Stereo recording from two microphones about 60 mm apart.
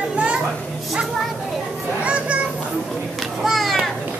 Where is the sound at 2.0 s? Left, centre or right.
Right.